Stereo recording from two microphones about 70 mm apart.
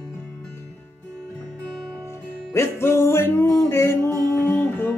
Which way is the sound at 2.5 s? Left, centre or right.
Left.